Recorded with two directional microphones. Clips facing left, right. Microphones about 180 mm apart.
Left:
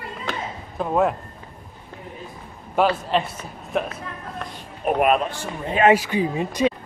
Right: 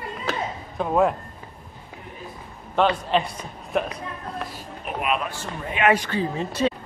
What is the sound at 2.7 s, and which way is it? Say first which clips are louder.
A man's voice: left 1 dB; 5° left (ahead or behind).